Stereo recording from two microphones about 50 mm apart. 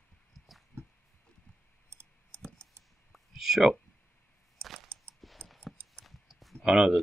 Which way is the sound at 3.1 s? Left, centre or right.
Centre.